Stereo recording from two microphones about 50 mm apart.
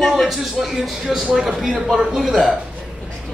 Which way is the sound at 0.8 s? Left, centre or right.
Centre.